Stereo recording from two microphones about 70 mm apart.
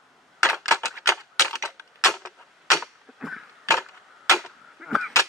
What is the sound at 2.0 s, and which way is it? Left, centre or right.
Clock, centre.